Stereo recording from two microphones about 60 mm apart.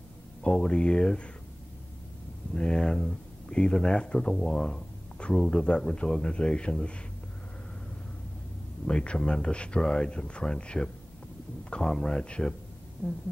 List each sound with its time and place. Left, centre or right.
0.4 s speech: centre
2.5 s speech: centre
8.8 s speech: centre